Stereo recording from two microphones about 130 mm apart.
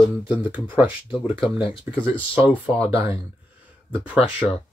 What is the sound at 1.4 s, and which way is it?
Speech, 40° left (ahead or behind).